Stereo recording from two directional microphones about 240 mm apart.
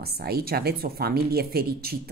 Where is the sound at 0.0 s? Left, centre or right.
Right.